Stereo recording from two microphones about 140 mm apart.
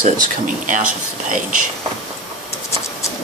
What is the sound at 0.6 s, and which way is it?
Speech, 70° right (ahead or behind).